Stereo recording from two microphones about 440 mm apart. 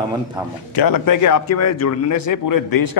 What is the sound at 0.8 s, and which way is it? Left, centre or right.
A man's voice, left.